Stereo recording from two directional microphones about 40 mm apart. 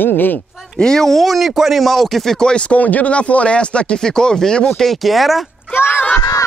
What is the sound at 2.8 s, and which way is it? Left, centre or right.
Speech, left.